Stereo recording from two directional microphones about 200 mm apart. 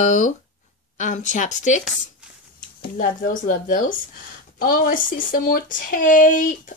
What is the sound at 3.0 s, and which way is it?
Speech, 45° left (ahead or behind).